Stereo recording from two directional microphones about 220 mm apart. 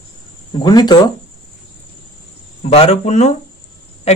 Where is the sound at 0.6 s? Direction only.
20° left (ahead or behind).